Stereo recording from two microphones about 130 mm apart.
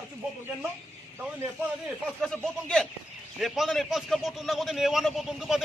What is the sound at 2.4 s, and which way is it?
A man's voice, 5° left (ahead or behind).